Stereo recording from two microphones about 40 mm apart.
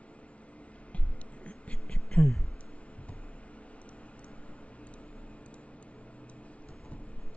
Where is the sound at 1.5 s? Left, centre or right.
Left.